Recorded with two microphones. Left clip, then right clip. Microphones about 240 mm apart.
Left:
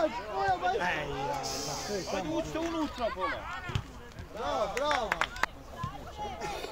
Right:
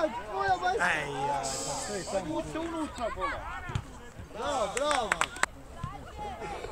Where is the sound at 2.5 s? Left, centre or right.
Left.